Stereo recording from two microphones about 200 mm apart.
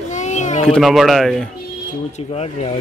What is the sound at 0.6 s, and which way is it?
Speech, centre (ahead or behind).